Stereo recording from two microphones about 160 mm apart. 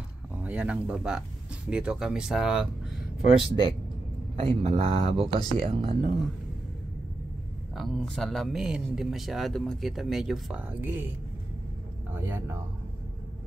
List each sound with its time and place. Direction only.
0.4 s speech: 10° right (ahead or behind)
3.3 s speech: 35° right (ahead or behind)
7.7 s speech: centre (ahead or behind)
12.1 s speech: 15° right (ahead or behind)